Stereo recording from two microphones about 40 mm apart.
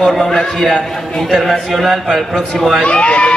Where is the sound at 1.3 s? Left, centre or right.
Centre.